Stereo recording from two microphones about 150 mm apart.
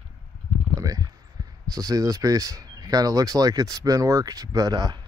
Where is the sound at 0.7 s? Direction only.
25° right (ahead or behind).